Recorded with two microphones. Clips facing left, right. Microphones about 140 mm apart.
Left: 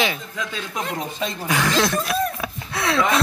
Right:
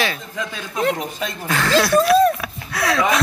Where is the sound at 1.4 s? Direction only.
15° left (ahead or behind).